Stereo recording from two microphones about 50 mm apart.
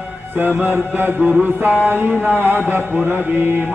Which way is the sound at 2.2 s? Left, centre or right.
Right.